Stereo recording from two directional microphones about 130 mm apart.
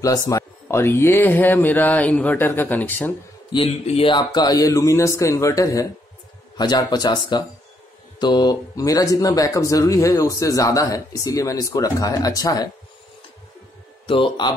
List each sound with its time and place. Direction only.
0.0 s speech: 25° left (ahead or behind)
3.5 s a man's voice: 50° left (ahead or behind)
4.1 s speech: 35° left (ahead or behind)
14.0 s speech: 40° left (ahead or behind)